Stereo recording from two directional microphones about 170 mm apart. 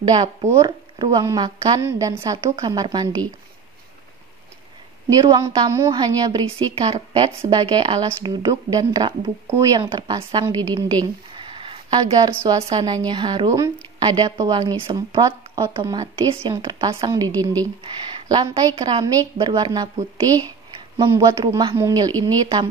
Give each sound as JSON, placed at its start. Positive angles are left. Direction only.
{"t": 0.0, "sound": "speech", "side_deg": -25}
{"t": 5.2, "sound": "speech", "side_deg": -25}